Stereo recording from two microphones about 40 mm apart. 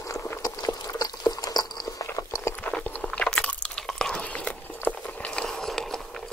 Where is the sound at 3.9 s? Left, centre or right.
Centre.